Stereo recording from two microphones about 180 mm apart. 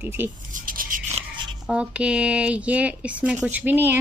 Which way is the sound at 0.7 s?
50° right (ahead or behind).